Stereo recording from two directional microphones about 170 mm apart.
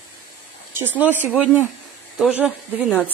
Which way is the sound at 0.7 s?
10° right (ahead or behind).